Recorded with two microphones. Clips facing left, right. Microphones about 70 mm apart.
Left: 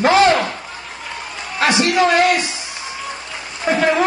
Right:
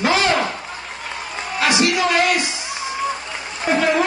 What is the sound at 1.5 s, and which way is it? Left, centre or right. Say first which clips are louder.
Speech: left 3 dB; left.